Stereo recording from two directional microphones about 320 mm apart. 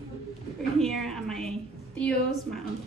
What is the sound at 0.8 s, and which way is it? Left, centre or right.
A woman's voice, centre.